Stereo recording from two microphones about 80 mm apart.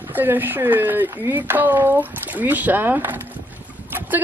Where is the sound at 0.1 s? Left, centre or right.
Right.